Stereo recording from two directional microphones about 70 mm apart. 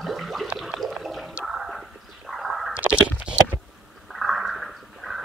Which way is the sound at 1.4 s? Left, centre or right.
Centre.